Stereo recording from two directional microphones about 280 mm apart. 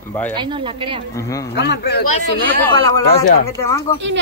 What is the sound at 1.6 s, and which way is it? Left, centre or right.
Speech, left.